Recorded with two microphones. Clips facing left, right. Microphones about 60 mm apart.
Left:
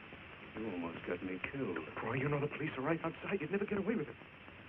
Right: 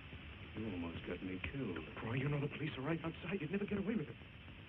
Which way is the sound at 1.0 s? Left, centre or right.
Left.